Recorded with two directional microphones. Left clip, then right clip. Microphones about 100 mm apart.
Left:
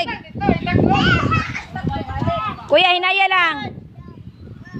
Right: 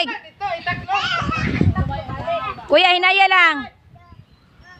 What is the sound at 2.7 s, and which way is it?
Speech, 35° right (ahead or behind).